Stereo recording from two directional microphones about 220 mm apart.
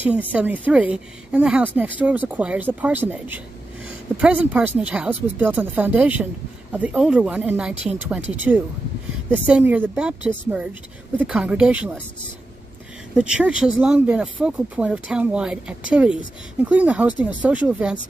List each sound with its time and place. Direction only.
0.3 s speech: 5° right (ahead or behind)
9.3 s speech: 5° right (ahead or behind)
13.1 s speech: 5° right (ahead or behind)